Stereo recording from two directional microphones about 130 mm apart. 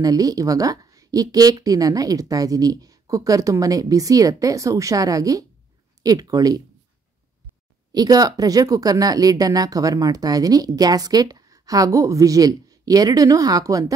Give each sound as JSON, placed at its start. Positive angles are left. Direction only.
{"t": 0.0, "sound": "speech", "side_deg": -30}
{"t": 7.9, "sound": "speech", "side_deg": -30}